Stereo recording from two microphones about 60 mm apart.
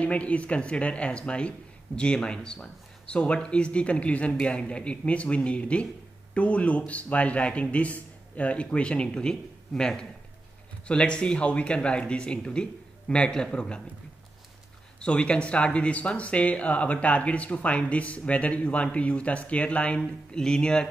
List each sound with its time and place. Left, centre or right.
0.0 s speech: left
15.0 s speech: centre